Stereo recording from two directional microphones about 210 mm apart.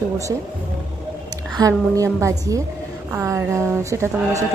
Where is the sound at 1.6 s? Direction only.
15° right (ahead or behind).